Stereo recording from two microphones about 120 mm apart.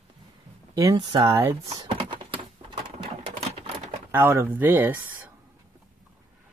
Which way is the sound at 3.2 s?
55° right (ahead or behind).